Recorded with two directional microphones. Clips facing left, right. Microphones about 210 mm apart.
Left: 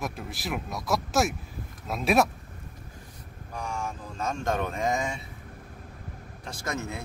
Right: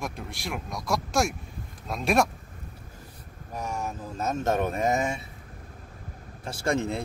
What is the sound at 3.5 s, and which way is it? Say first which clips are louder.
Vehicle: right 2 dB; 20° right (ahead or behind).